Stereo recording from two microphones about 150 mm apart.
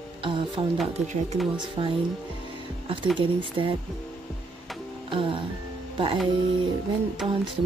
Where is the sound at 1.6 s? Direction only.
35° right (ahead or behind).